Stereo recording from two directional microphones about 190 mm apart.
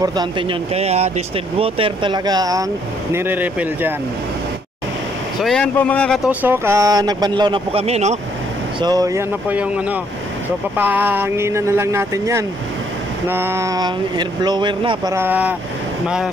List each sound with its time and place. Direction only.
0.0 s speech: 20° right (ahead or behind)
5.4 s speech: 5° left (ahead or behind)
6.4 s speech: 10° right (ahead or behind); by 8.2 s 35° right (ahead or behind)
8.8 s speech: 20° right (ahead or behind)
15.1 s speech: 10° right (ahead or behind)